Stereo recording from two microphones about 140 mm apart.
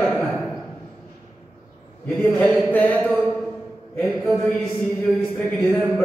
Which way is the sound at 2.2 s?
10° left (ahead or behind).